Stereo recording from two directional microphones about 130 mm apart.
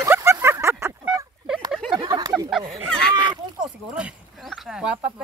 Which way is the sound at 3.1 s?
35° right (ahead or behind).